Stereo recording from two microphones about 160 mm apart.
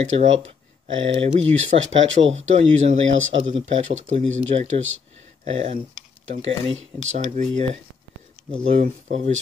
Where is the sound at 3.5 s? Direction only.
50° right (ahead or behind).